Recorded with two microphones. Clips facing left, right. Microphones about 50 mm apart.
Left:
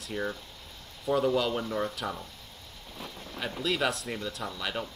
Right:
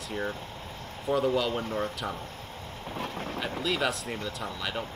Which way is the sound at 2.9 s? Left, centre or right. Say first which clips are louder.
Right 8 dB; right.